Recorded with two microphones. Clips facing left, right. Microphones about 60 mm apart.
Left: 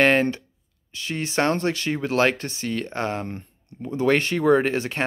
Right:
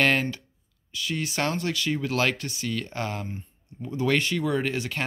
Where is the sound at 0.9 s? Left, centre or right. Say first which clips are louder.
Left 4 dB; left.